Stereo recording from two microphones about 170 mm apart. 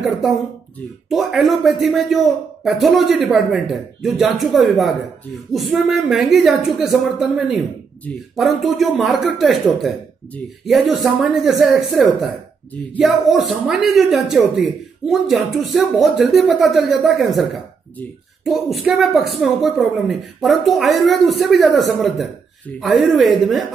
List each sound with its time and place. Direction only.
1.0 s a man's voice: centre (ahead or behind)